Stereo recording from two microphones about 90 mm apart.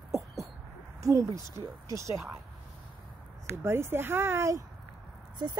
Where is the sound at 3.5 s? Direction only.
30° right (ahead or behind).